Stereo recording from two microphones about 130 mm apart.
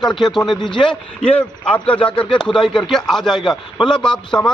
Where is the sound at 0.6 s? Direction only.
40° left (ahead or behind).